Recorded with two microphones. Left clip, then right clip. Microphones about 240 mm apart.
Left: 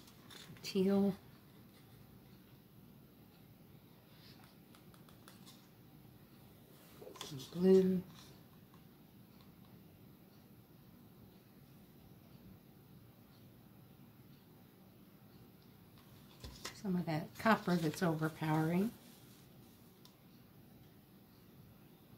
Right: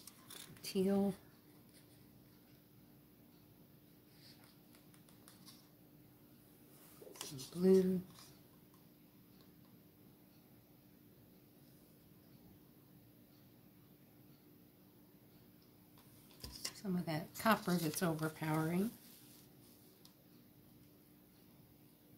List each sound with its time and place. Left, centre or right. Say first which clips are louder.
0.6 s speech: left 2 dB; centre
7.2 s a sound: left 1 dB; centre
16.3 s speech: right 1 dB; centre